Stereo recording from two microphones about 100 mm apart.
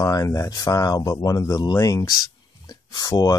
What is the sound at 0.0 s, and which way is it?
Speech, 30° left (ahead or behind).